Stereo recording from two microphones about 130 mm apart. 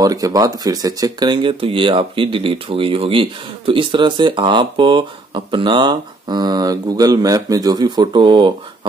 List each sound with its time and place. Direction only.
0.0 s speech: 25° right (ahead or behind)